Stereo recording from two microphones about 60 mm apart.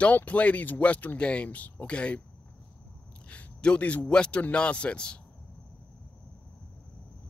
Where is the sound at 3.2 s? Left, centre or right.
Left.